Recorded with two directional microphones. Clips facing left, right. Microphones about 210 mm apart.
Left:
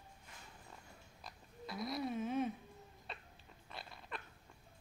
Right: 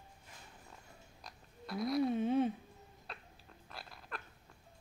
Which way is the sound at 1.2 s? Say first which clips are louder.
Right 2 dB; centre (ahead or behind).